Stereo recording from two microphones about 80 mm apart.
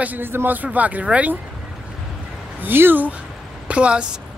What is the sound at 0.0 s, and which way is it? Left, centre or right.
Speech, right.